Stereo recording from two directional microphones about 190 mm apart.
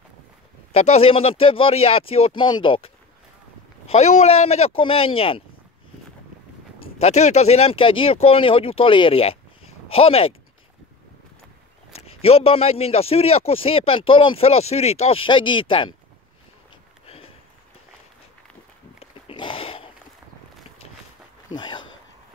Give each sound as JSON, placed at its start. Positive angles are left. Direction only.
{"t": 0.7, "sound": "a man's voice", "side_deg": 35}
{"t": 6.8, "sound": "speech", "side_deg": 35}
{"t": 12.1, "sound": "a man's voice", "side_deg": 30}
{"t": 18.9, "sound": "dog", "side_deg": 30}
{"t": 21.5, "sound": "speech", "side_deg": 25}